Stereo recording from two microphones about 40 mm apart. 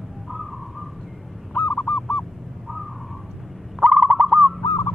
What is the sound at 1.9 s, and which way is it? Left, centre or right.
Goose, centre.